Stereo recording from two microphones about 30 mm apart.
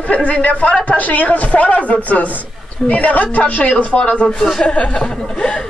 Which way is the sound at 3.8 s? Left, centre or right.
Left.